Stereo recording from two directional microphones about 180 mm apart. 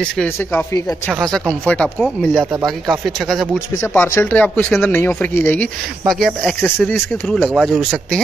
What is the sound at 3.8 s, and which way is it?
A man's voice, 10° left (ahead or behind).